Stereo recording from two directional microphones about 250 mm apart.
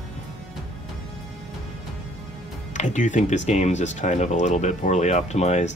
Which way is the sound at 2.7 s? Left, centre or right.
Left.